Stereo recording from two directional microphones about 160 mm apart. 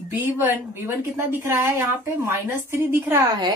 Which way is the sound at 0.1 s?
10° right (ahead or behind).